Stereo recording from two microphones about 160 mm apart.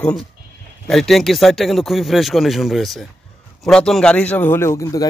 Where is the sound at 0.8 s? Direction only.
Centre (ahead or behind).